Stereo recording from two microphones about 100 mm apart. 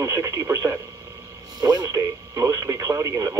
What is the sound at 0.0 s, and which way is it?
Speech, 30° right (ahead or behind).